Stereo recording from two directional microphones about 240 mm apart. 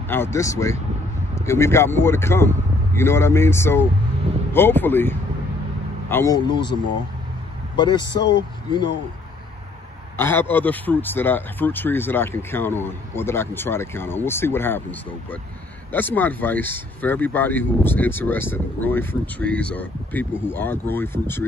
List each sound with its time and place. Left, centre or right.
0.1 s a man's voice: centre
10.1 s speech: centre